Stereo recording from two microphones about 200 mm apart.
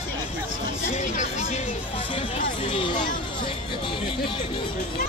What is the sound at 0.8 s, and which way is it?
Music, 40° left (ahead or behind).